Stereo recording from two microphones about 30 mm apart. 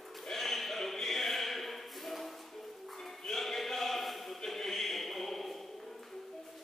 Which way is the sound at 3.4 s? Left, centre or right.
Centre.